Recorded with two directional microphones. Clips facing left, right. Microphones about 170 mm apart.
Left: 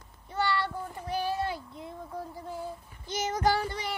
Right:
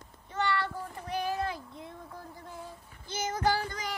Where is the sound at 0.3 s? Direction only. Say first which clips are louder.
Left 1 dB; 35° left (ahead or behind).